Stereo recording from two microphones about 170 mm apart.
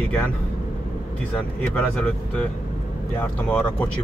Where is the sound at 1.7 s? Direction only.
10° left (ahead or behind).